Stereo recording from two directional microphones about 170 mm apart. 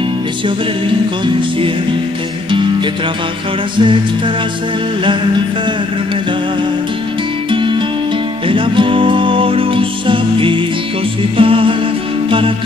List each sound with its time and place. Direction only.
0.8 s music: 30° right (ahead or behind)
3.7 s music: 30° right (ahead or behind)
7.5 s music: 30° right (ahead or behind)